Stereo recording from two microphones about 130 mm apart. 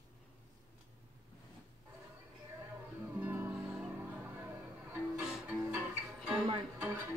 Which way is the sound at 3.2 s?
15° right (ahead or behind).